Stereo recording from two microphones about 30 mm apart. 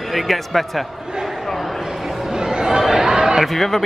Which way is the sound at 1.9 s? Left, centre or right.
Centre.